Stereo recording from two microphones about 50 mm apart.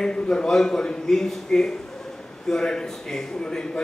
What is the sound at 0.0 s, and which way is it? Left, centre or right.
Speech, centre.